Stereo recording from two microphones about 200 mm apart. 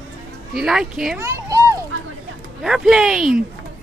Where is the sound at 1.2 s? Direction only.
15° right (ahead or behind).